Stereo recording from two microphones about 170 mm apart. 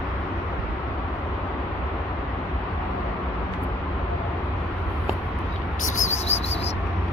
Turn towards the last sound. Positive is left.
turn(degrees=40)  # may be behind; listen again after turning